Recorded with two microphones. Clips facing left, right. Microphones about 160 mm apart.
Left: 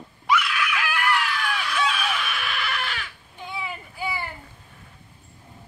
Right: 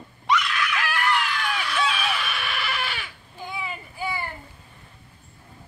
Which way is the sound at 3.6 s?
5° left (ahead or behind).